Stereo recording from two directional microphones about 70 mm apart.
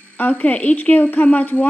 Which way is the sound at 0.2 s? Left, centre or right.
Left.